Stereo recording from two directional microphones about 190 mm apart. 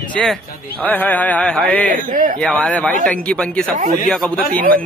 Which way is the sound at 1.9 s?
45° right (ahead or behind).